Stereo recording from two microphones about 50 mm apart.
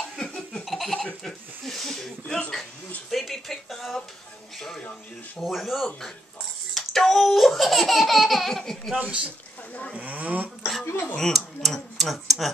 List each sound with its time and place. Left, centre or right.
0.1 s laughter: centre
0.7 s laughter: centre
1.2 s a sound: centre
4.6 s speech: centre
8.9 s speech: right
11.1 s speech: centre